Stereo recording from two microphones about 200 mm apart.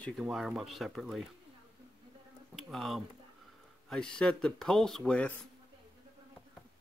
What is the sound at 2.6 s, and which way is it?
Speech, centre (ahead or behind).